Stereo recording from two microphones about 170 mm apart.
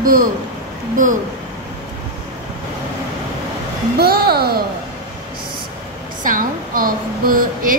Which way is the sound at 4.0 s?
65° right (ahead or behind).